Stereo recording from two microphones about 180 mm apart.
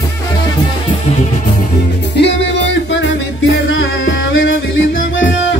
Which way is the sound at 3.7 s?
90° left.